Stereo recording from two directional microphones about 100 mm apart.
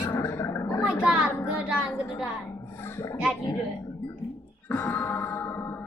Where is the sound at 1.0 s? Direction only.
10° right (ahead or behind).